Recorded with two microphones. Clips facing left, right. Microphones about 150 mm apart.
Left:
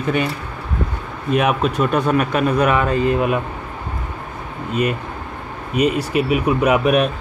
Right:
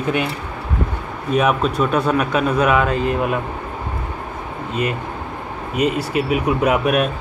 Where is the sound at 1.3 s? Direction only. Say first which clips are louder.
Even; 5° left (ahead or behind).